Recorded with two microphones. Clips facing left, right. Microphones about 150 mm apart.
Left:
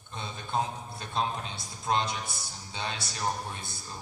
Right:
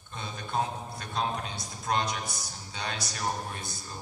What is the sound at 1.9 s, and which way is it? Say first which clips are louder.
A man's voice: left 1 dB; 25° left (ahead or behind).